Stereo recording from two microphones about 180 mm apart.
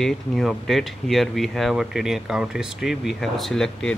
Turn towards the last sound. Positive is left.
turn(degrees=5)  # may be behind; listen again after turning